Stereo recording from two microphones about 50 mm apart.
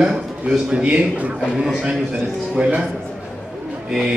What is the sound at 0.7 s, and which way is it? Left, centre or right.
Speech, right.